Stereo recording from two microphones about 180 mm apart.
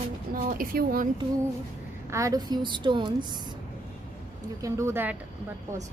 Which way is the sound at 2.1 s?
20° right (ahead or behind).